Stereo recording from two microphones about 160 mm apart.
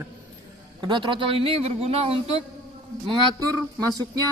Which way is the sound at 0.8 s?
30° right (ahead or behind).